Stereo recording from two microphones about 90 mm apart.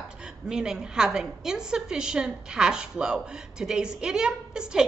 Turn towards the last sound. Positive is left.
turn(degrees=-10)  # may be behind; listen again after turning